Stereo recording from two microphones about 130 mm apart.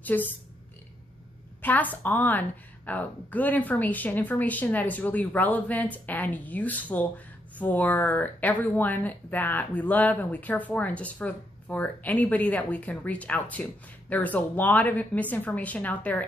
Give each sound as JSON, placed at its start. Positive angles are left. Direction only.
{"t": 0.0, "sound": "speech", "side_deg": 15}
{"t": 1.6, "sound": "speech", "side_deg": 15}